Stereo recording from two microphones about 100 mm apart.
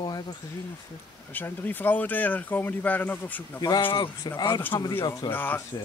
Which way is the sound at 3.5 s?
40° left (ahead or behind).